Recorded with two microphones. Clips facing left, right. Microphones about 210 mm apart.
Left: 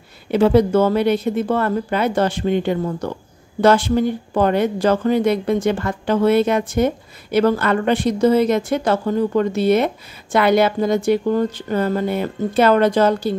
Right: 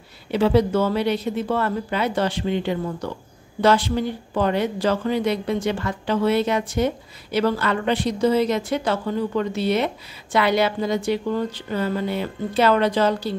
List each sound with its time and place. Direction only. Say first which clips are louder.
0.3 s speech: left 4 dB; 50° left (ahead or behind)